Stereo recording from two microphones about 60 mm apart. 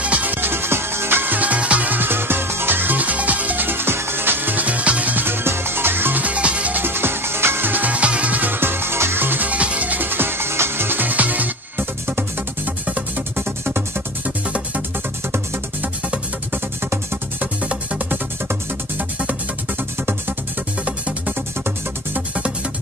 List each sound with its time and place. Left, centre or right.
0.0 s music: right
5.2 s music: right
6.8 s music: right
13.4 s music: right
17.6 s music: right